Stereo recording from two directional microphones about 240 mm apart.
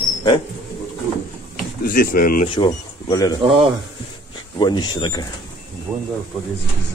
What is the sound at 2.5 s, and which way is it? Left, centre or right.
Speech, centre.